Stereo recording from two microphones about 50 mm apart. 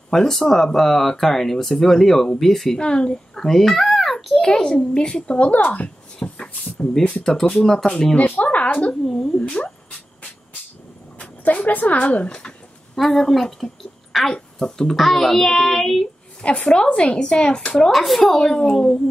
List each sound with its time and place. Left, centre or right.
0.1 s a child's voice: centre
3.3 s a child's voice: centre; by 5.9 s left
6.2 s a sound: left
7.2 s speech: centre
8.4 s speech: left
9.0 s a sound: centre
11.1 s speech: left
12.9 s a child's voice: centre
16.4 s a woman's voice: left
17.9 s a child's voice: centre
18.3 s speech: centre